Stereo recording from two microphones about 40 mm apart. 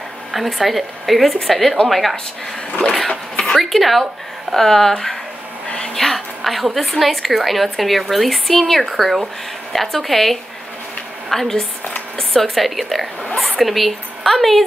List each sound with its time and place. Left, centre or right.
0.3 s a woman's voice: centre
3.1 s a sound: left
3.6 s a woman's voice: centre
4.6 s speech: centre
5.9 s a sound: centre
6.9 s a woman's voice: centre